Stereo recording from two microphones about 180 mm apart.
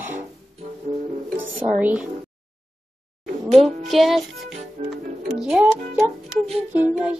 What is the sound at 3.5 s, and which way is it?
Music, centre (ahead or behind).